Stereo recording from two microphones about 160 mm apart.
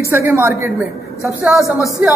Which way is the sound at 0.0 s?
15° right (ahead or behind).